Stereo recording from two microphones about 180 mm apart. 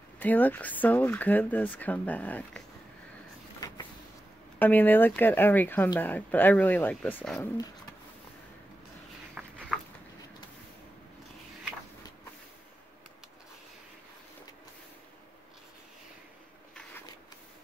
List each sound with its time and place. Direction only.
0.2 s speech: 10° left (ahead or behind)
3.6 s vehicle: 20° left (ahead or behind)
4.6 s speech: 10° left (ahead or behind)
9.3 s a sound: 10° right (ahead or behind)